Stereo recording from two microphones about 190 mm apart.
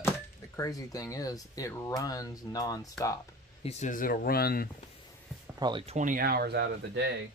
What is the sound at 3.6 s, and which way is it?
Speech, 40° left (ahead or behind).